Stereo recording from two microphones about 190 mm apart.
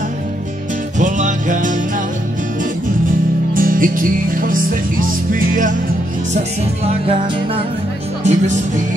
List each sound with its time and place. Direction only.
0.9 s music: 40° right (ahead or behind)
3.5 s music: 45° right (ahead or behind)
8.2 s speech: 40° right (ahead or behind)